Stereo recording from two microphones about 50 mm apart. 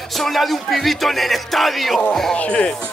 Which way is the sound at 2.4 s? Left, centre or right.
Left.